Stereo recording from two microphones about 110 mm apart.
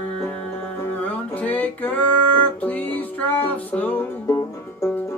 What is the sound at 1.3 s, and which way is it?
Music, 15° left (ahead or behind).